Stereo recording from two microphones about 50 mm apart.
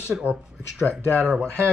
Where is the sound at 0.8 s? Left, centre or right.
Left.